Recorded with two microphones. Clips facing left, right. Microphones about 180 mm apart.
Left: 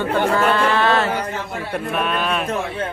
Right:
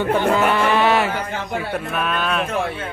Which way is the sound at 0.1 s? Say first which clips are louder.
Even; 15° right (ahead or behind).